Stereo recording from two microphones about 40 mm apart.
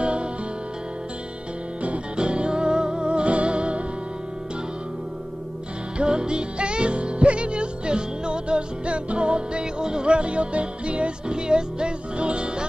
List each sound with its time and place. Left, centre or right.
0.0 s music: right
2.1 s music: right
5.9 s music: right